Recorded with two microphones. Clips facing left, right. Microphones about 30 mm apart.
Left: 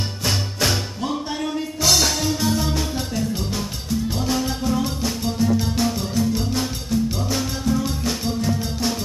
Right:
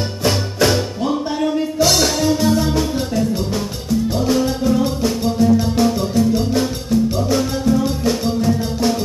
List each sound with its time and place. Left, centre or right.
0.2 s music: centre